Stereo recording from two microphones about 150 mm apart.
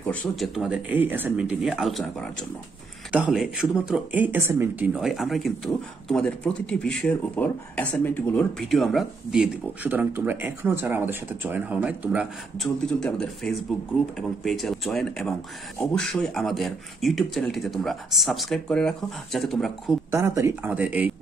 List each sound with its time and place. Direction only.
0.0 s speech: 5° left (ahead or behind)
0.8 s speech: 15° right (ahead or behind)
20.1 s speech: 20° right (ahead or behind)